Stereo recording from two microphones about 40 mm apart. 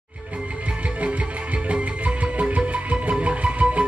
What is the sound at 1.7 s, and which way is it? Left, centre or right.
Music, right.